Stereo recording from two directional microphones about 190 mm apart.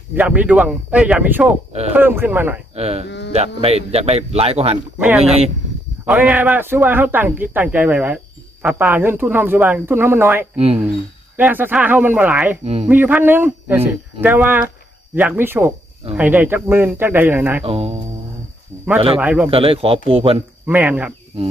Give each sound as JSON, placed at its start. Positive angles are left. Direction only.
{"t": 0.1, "sound": "speech", "side_deg": -10}
{"t": 2.7, "sound": "speech", "side_deg": -35}
{"t": 4.9, "sound": "speech", "side_deg": -10}
{"t": 5.2, "sound": "speech", "side_deg": -35}
{"t": 6.0, "sound": "speech", "side_deg": -5}
{"t": 17.6, "sound": "speech", "side_deg": -30}
{"t": 19.1, "sound": "speech", "side_deg": -5}
{"t": 19.5, "sound": "speech", "side_deg": -30}
{"t": 20.6, "sound": "speech", "side_deg": -10}